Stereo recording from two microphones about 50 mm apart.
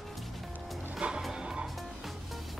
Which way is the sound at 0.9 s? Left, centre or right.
Centre.